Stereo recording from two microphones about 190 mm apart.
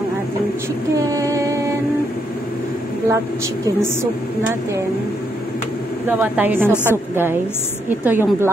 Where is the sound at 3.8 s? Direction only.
15° right (ahead or behind).